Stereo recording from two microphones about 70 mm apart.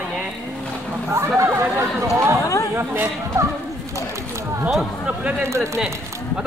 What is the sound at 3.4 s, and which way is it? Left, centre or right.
Speech, right.